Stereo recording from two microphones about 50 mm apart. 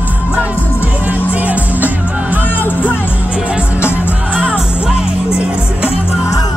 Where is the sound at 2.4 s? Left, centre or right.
Left.